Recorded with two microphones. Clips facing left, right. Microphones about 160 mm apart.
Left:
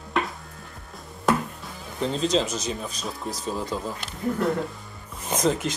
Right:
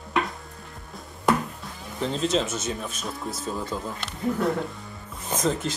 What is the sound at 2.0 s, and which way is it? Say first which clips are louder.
Speech: left 1 dB; centre (ahead or behind).